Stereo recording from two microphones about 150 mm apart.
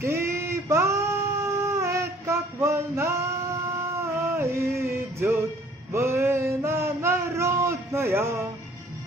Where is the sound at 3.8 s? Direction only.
20° right (ahead or behind).